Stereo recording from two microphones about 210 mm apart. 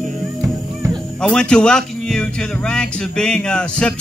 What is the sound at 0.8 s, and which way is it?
Speech, centre (ahead or behind).